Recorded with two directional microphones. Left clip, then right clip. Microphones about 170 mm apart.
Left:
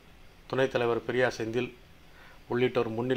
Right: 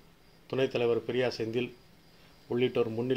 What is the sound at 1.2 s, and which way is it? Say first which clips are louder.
Speech: left 3 dB; 10° left (ahead or behind).